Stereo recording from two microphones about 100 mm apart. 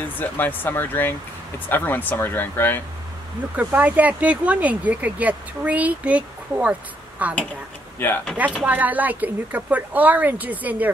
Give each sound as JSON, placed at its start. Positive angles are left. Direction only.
{"t": 0.0, "sound": "speech", "side_deg": 20}
{"t": 3.5, "sound": "speech", "side_deg": -15}
{"t": 8.0, "sound": "speech", "side_deg": 20}
{"t": 8.4, "sound": "speech", "side_deg": -15}